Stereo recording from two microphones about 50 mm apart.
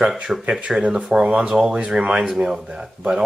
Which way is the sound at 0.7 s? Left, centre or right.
Right.